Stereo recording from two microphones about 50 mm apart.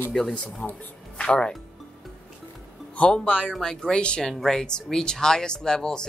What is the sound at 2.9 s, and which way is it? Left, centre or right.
Speech, left.